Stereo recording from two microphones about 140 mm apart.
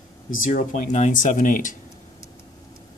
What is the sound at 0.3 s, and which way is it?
Speech, 75° left (ahead or behind).